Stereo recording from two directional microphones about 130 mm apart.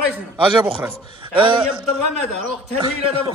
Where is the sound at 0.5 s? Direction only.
40° right (ahead or behind).